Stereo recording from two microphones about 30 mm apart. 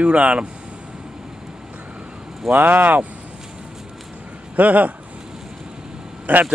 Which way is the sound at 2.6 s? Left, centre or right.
Right.